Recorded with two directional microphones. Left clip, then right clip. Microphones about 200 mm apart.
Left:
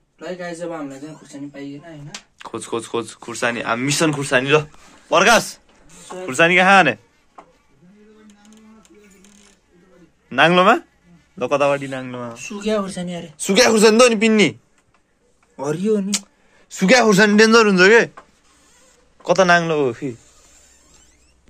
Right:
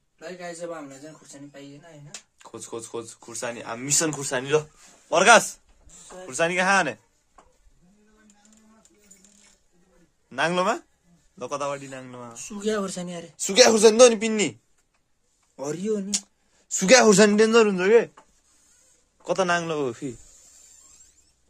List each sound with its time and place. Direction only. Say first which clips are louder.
2.3 s speech: left 11 dB; centre (ahead or behind)
5.1 s speech: left 2 dB; centre (ahead or behind)
10.3 s a man's voice: left 11 dB; 5° left (ahead or behind)
12.5 s speech: left 5 dB; 55° right (ahead or behind)
13.1 s a man's voice: left 6 dB; 15° right (ahead or behind)
15.5 s a man's voice: left 8 dB; 20° right (ahead or behind); by 18.1 s centre (ahead or behind)
19.2 s a man's voice: left 9 dB; 15° right (ahead or behind)